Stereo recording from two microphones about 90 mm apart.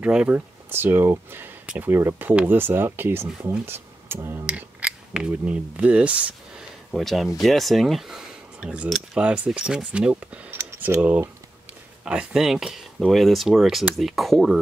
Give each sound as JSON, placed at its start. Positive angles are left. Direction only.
{"t": 0.0, "sound": "speech", "side_deg": -10}
{"t": 0.7, "sound": "speech", "side_deg": -25}
{"t": 4.5, "sound": "speech", "side_deg": -15}
{"t": 6.9, "sound": "speech", "side_deg": 0}
{"t": 10.6, "sound": "computer keyboard", "side_deg": -30}
{"t": 11.0, "sound": "speech", "side_deg": -15}